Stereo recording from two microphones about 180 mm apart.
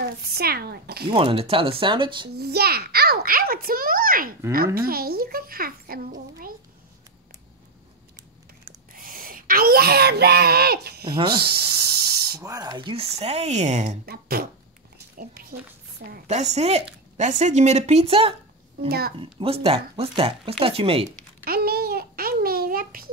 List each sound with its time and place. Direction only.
0.0 s a child's voice: 60° right (ahead or behind)
1.1 s speech: 30° right (ahead or behind)
2.3 s a child's voice: 60° right (ahead or behind)
8.9 s speech: 55° right (ahead or behind)
11.3 s snake: 60° right (ahead or behind)
12.4 s speech: 20° right (ahead or behind); by 13.9 s 40° right (ahead or behind)
14.0 s a child's voice: 55° right (ahead or behind)
16.3 s speech: 40° right (ahead or behind)
18.9 s a child's voice: 60° right (ahead or behind)
19.1 s speech: 30° right (ahead or behind)
21.5 s a child's voice: 60° right (ahead or behind)